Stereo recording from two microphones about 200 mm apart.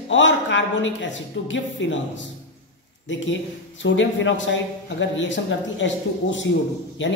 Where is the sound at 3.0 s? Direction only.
65° left (ahead or behind).